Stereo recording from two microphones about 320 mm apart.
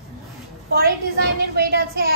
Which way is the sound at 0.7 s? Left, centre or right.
Right.